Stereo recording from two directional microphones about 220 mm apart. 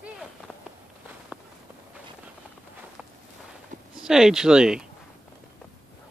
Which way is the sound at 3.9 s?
Centre (ahead or behind).